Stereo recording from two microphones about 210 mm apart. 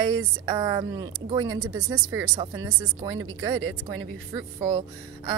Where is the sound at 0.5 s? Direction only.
20° right (ahead or behind).